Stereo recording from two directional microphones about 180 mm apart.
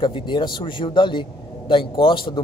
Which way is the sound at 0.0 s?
25° left (ahead or behind).